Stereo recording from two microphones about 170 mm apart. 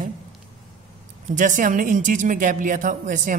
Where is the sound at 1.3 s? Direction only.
50° right (ahead or behind).